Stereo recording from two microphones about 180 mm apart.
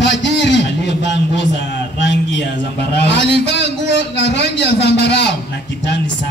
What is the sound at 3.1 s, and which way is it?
A man's voice, 75° left (ahead or behind).